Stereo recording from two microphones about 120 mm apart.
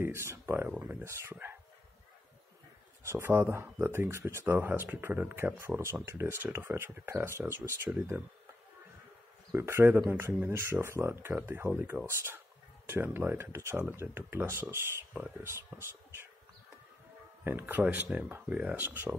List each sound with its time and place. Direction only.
0.0 s speech: 20° right (ahead or behind)
3.0 s speech: 20° right (ahead or behind)
9.5 s speech: 20° right (ahead or behind)
12.1 s speech: 20° right (ahead or behind)
17.5 s speech: 15° right (ahead or behind)